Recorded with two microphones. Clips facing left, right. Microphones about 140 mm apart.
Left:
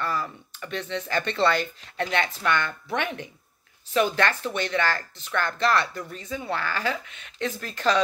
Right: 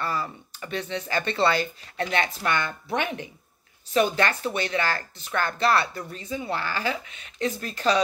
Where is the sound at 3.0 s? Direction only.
15° right (ahead or behind).